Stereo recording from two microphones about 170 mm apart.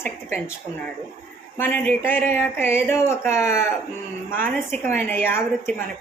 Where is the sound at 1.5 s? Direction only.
10° left (ahead or behind).